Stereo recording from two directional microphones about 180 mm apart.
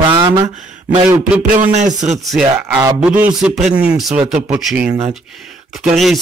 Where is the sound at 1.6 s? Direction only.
45° right (ahead or behind).